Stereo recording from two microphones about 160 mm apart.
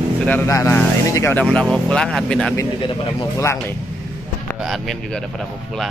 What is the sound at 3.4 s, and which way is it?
Speech, 15° left (ahead or behind).